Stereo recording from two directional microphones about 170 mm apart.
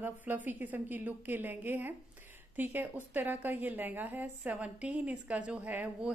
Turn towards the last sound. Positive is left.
turn(degrees=-10)  # may be behind; listen again after turning